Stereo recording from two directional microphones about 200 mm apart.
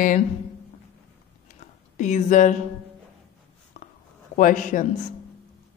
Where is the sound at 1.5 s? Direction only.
35° left (ahead or behind).